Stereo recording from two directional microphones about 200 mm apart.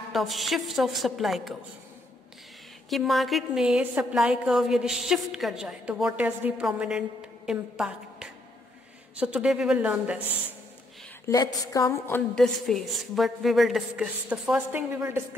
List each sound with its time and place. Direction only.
0.1 s a woman's voice: centre (ahead or behind)
2.9 s a woman's voice: centre (ahead or behind)
11.2 s a woman's voice: 15° left (ahead or behind)
12.4 s a woman's voice: centre (ahead or behind)